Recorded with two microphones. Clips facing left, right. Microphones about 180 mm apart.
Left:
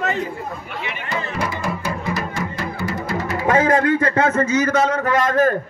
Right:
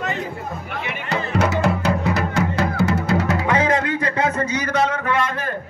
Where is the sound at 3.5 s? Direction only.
50° left (ahead or behind).